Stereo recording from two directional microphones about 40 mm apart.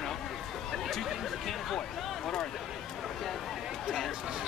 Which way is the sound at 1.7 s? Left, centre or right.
Centre.